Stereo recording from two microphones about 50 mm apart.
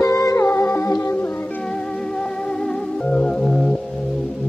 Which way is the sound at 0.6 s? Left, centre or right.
Left.